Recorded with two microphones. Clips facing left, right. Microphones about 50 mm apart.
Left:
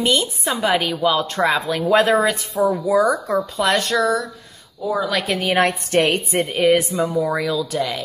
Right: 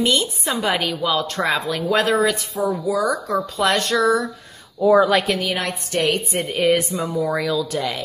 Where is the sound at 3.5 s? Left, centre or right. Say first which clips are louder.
Right 1 dB; centre.